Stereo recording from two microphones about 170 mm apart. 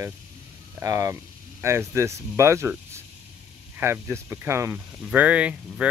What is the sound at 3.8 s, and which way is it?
Speech, 15° right (ahead or behind).